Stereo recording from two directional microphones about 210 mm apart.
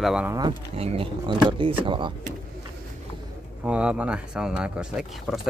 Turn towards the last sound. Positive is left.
turn(degrees=-5)  # may be behind; listen again after turning